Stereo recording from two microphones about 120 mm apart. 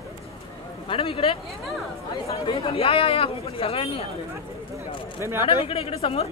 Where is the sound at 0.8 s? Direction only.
50° left (ahead or behind).